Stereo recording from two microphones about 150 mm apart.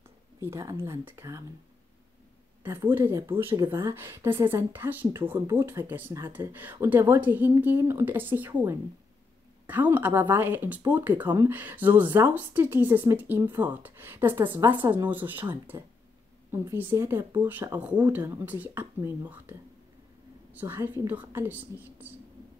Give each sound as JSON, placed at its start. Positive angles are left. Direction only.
{"t": 0.4, "sound": "speech", "side_deg": -20}
{"t": 2.6, "sound": "speech", "side_deg": -15}
{"t": 20.5, "sound": "speech", "side_deg": -15}